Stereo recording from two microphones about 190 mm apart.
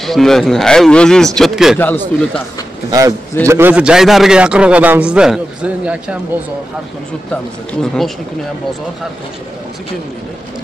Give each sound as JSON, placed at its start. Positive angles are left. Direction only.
{"t": 0.0, "sound": "a man's voice", "side_deg": 0}
{"t": 1.8, "sound": "speech", "side_deg": 10}
{"t": 2.9, "sound": "a man's voice", "side_deg": -20}
{"t": 7.8, "sound": "a man's voice", "side_deg": 0}